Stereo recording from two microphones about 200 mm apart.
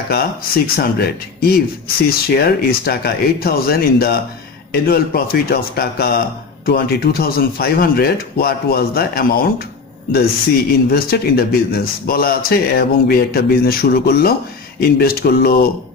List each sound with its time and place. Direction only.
0.7 s speech: 50° left (ahead or behind)